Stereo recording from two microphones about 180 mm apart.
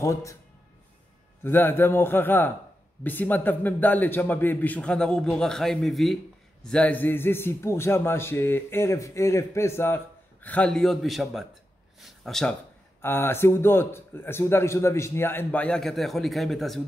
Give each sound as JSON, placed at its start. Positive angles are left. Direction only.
{"t": 0.0, "sound": "a man's voice", "side_deg": 15}
{"t": 1.4, "sound": "a man's voice", "side_deg": 10}